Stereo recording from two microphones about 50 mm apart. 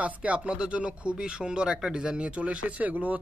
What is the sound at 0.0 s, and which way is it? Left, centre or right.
A man's voice, right.